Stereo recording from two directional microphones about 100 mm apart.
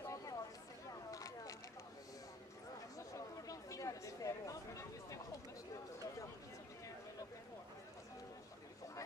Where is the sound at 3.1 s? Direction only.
35° left (ahead or behind).